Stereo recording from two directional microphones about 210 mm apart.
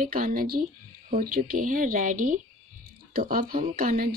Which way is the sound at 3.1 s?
40° right (ahead or behind).